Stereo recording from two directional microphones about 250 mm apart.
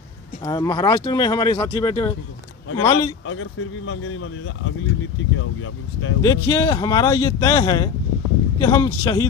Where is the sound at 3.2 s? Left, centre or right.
Left.